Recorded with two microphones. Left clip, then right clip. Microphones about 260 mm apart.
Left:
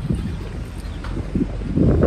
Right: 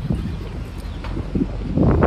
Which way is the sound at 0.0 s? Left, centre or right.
Left.